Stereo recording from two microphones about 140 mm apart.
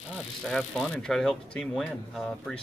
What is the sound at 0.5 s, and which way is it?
Speech, centre (ahead or behind).